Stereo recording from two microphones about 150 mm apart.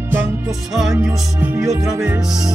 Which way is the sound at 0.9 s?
20° right (ahead or behind).